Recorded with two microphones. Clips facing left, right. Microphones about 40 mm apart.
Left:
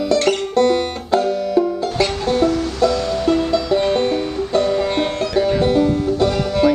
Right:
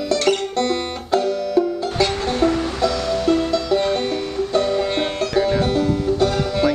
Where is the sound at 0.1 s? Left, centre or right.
Centre.